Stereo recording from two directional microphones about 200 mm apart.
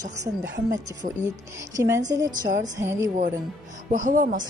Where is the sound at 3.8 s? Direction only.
40° right (ahead or behind).